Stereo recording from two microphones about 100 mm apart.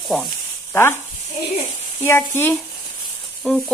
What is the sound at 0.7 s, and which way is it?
Speech, 25° left (ahead or behind).